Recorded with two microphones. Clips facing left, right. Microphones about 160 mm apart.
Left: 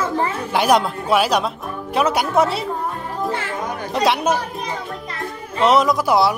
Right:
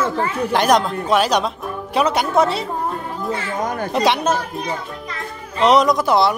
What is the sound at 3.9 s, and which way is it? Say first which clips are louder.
Speech: even; centre (ahead or behind).